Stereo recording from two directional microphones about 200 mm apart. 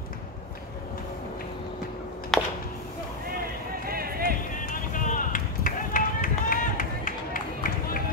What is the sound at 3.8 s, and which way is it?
Run, 45° right (ahead or behind).